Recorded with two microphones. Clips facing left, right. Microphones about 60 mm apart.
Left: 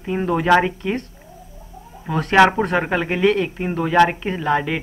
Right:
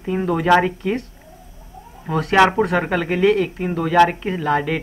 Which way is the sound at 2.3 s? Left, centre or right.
Centre.